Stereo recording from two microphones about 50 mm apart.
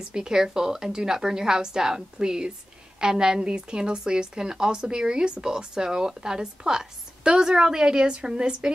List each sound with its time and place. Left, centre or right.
0.1 s a woman's voice: centre